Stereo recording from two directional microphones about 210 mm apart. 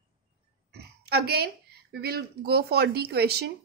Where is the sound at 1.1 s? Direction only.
50° right (ahead or behind).